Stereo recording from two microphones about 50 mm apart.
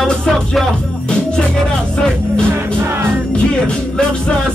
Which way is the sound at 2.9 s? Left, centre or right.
Right.